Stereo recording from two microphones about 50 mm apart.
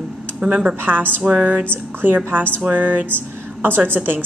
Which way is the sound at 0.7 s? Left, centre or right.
Right.